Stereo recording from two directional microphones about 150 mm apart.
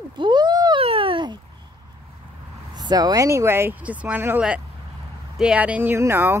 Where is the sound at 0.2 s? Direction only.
30° right (ahead or behind).